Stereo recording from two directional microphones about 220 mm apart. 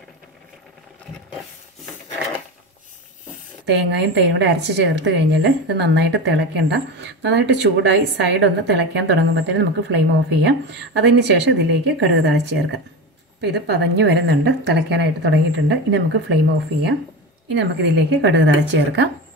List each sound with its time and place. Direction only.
3.6 s speech: 50° right (ahead or behind)
17.5 s speech: 50° right (ahead or behind)